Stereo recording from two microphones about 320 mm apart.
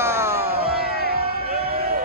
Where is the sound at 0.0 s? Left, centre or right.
Centre.